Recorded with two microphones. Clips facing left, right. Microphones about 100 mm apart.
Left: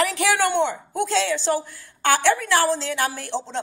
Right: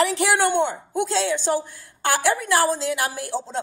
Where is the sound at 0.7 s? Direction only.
15° right (ahead or behind).